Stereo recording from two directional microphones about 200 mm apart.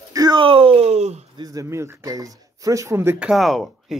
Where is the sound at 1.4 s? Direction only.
15° right (ahead or behind); by 3.9 s centre (ahead or behind).